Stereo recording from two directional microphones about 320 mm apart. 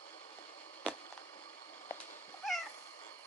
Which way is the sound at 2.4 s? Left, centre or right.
Centre.